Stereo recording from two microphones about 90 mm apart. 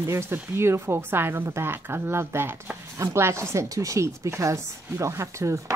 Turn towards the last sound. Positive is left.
turn(degrees=-35)  # may be behind; listen again after turning